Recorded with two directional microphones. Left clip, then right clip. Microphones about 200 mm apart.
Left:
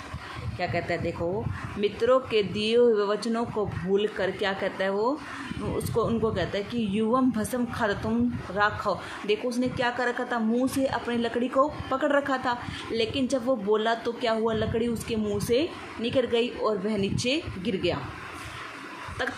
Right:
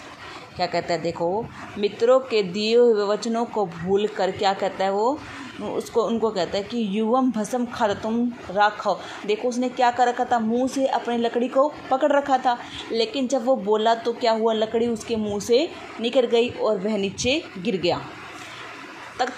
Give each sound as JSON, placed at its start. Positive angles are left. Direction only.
{"t": 0.6, "sound": "a woman's voice", "side_deg": -10}
{"t": 19.2, "sound": "speech", "side_deg": -10}